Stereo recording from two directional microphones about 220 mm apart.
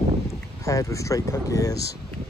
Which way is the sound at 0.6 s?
15° left (ahead or behind).